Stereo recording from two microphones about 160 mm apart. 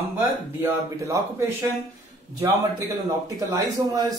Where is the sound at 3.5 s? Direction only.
25° right (ahead or behind).